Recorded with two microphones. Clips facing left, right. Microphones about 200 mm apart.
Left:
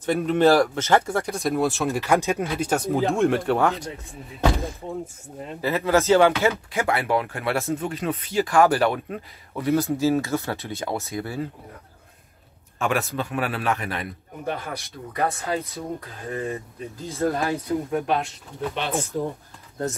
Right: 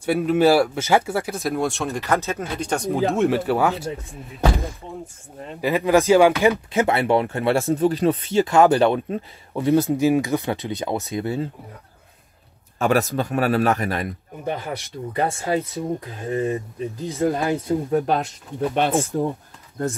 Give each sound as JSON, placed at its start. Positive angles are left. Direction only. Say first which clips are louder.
{"t": 0.0, "sound": "speech", "louder": "right 1 dB", "side_deg": -5}
{"t": 5.0, "sound": "speech", "louder": "left 1 dB", "side_deg": 5}
{"t": 5.6, "sound": "speech", "louder": "right 3 dB", "side_deg": -15}
{"t": 6.7, "sound": "speech", "louder": "right 4 dB", "side_deg": -25}
{"t": 12.7, "sound": "speech", "louder": "right 5 dB", "side_deg": -40}
{"t": 14.4, "sound": "speech", "louder": "right 3 dB", "side_deg": -20}
{"t": 17.9, "sound": "speech", "louder": "right 4 dB", "side_deg": -40}
{"t": 18.8, "sound": "speech", "louder": "right 7 dB", "side_deg": -50}